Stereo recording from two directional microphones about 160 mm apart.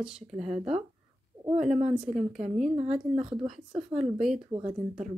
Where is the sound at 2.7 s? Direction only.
40° right (ahead or behind).